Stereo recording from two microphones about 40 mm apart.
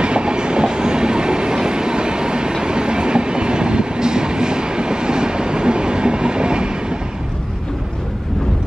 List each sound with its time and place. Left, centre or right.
0.0 s train: right